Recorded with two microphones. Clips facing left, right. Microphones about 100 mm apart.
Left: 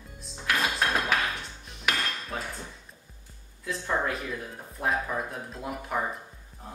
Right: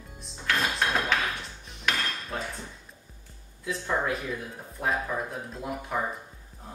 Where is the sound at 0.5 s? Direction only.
5° left (ahead or behind).